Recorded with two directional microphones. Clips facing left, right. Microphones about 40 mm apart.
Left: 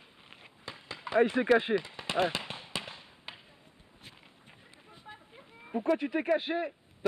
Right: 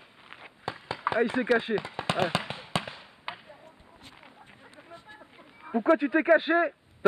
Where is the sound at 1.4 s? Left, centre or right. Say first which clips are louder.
Even; centre.